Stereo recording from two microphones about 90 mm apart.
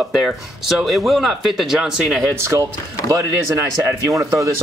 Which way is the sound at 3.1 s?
35° right (ahead or behind).